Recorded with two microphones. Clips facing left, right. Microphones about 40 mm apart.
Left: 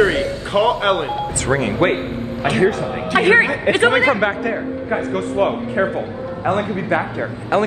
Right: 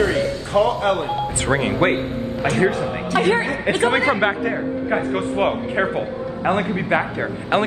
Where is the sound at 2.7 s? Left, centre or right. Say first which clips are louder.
Left 2 dB; left.